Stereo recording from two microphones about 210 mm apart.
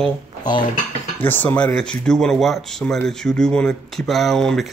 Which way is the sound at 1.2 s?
10° left (ahead or behind).